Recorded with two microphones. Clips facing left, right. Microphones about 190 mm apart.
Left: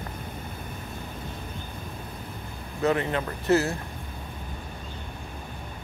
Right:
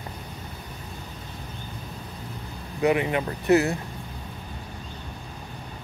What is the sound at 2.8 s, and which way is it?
Speech, 15° right (ahead or behind).